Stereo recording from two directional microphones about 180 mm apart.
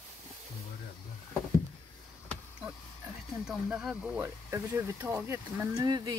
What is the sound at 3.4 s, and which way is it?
Speech, 5° right (ahead or behind).